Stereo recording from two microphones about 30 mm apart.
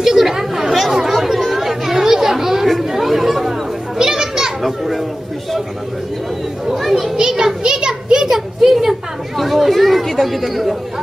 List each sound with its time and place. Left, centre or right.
0.0 s chatter: centre
4.0 s children playing: centre
4.6 s children playing: centre
6.6 s children playing: centre
7.2 s children playing: right
8.3 s a sound: centre
9.4 s chatter: centre